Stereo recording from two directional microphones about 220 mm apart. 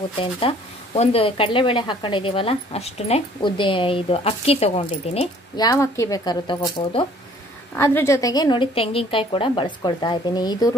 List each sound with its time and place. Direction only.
0.2 s speech: 25° left (ahead or behind)
5.7 s speech: 15° left (ahead or behind)
7.7 s speech: 10° left (ahead or behind)